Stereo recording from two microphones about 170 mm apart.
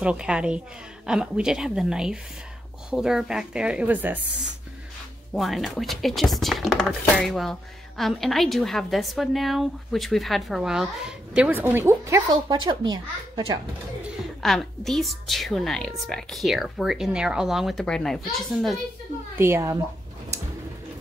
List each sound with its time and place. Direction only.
0.0 s a woman's voice: 5° right (ahead or behind)
5.3 s a woman's voice: centre (ahead or behind); by 13.0 s 25° right (ahead or behind)
14.4 s a woman's voice: centre (ahead or behind)
19.3 s speech: 15° right (ahead or behind)